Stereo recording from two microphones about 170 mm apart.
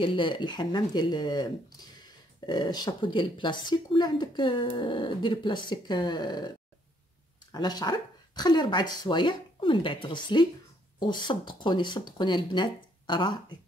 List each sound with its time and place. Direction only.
0.0 s speech: 30° left (ahead or behind)
7.5 s speech: 25° left (ahead or behind)